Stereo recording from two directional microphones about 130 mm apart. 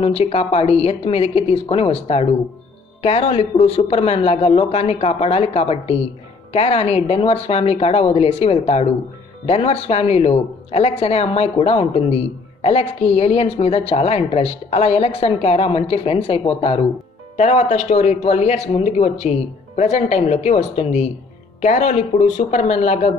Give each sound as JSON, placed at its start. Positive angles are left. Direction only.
{"t": 0.0, "sound": "a woman's voice", "side_deg": 45}
{"t": 17.4, "sound": "speech", "side_deg": 60}